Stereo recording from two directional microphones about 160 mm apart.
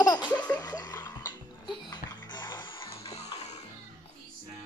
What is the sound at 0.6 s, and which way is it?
Music, 25° left (ahead or behind).